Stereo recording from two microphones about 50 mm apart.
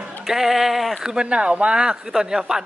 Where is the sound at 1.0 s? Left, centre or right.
Centre.